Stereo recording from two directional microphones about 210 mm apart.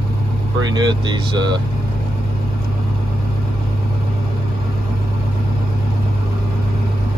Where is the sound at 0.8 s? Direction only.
20° right (ahead or behind).